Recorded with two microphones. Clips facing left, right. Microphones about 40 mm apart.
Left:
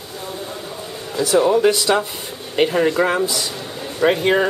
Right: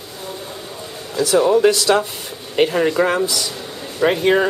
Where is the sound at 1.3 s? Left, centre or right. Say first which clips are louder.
Right 1 dB; centre.